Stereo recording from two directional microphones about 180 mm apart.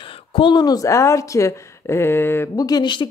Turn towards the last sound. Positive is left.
turn(degrees=25)  # may be behind; listen again after turning